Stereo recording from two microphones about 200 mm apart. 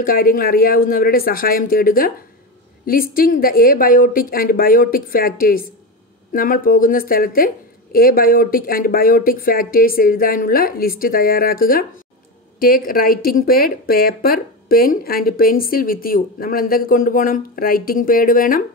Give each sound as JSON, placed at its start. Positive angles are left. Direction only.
{"t": 0.0, "sound": "speech", "side_deg": 45}